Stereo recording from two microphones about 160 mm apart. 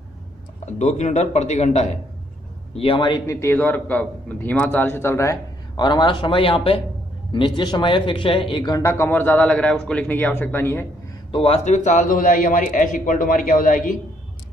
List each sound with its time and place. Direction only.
0.7 s a man's voice: 45° left (ahead or behind)
3.3 s a man's voice: 15° left (ahead or behind)
11.3 s a man's voice: 40° left (ahead or behind); by 13.9 s 55° left (ahead or behind)